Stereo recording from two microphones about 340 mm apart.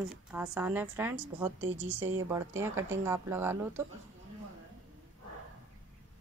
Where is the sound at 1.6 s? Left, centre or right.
Right.